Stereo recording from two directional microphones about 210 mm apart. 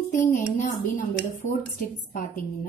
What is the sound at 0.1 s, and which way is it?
Speech, 40° left (ahead or behind).